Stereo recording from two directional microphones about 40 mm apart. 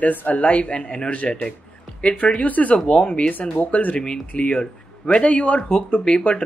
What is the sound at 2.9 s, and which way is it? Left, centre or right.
Speech, left.